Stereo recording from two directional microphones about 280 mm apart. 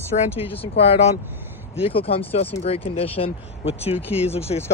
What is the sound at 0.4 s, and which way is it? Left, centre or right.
Speech, centre.